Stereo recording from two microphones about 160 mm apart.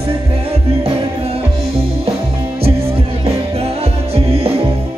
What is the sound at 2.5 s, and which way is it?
Music, 40° right (ahead or behind).